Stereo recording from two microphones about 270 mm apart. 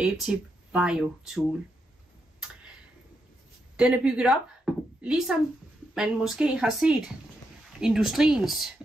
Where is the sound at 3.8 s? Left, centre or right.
Centre.